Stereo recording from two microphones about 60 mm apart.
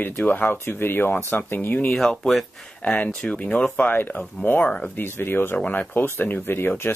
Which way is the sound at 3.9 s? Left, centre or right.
Left.